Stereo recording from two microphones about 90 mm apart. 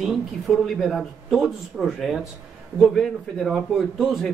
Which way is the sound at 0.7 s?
Centre (ahead or behind).